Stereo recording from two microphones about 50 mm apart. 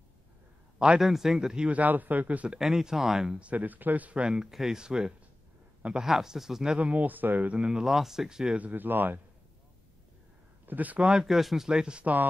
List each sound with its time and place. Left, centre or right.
0.9 s speech: centre
1.7 s a man's voice: right
2.6 s speech: centre
3.4 s a man's voice: right
4.2 s speech: centre
4.5 s speech: centre
6.8 s a man's voice: right
7.5 s speech: centre
7.8 s speech: centre
8.5 s a man's voice: right
10.7 s a man's voice: right
11.2 s speech: centre